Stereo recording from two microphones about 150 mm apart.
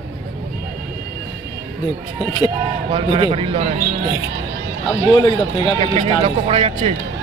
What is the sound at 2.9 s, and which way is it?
Speech, 35° right (ahead or behind).